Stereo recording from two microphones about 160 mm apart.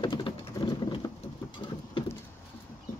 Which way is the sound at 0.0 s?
30° left (ahead or behind).